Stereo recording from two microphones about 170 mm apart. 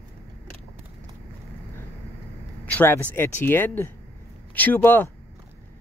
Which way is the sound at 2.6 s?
10° left (ahead or behind).